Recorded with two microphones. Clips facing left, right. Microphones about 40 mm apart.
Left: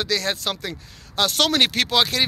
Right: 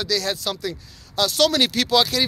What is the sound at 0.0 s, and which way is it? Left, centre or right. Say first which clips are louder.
Speech: even; left.